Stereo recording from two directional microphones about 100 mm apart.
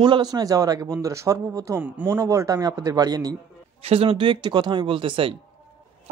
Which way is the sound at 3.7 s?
75° right (ahead or behind).